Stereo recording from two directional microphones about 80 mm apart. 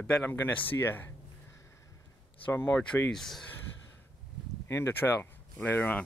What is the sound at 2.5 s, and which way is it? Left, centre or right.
Speech, left.